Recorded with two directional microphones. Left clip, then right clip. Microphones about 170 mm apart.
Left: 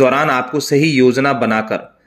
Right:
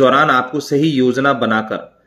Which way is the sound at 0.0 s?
10° left (ahead or behind).